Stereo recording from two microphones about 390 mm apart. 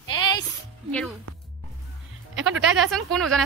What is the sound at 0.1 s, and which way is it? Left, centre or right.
Music, centre.